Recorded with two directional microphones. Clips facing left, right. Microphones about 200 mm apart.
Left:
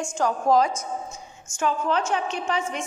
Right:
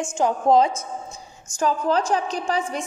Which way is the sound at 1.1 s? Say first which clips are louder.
Right 3 dB; 35° right (ahead or behind).